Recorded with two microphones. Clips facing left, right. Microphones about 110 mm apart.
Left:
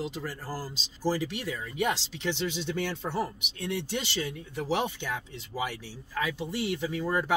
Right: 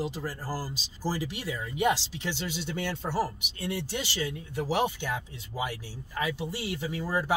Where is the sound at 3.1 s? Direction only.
10° right (ahead or behind).